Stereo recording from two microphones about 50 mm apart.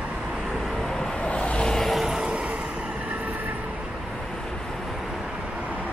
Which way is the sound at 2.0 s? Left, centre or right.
Centre.